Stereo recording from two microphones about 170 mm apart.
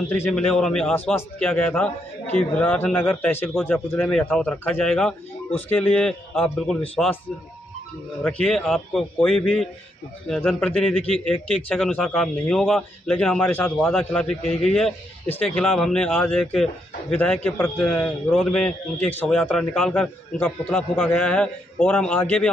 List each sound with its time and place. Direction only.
0.5 s a man's voice: 5° left (ahead or behind)
8.2 s a man's voice: 5° left (ahead or behind)